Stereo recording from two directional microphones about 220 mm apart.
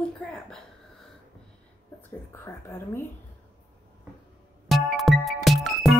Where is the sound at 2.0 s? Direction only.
10° left (ahead or behind).